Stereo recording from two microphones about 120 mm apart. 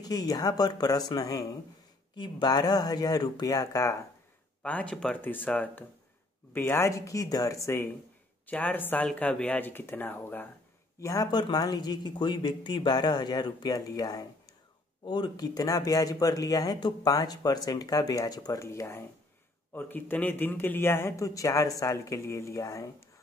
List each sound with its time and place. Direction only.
0.0 s speech: 35° left (ahead or behind)
2.1 s speech: 40° left (ahead or behind)
4.6 s speech: 10° left (ahead or behind)
11.0 s speech: 30° left (ahead or behind)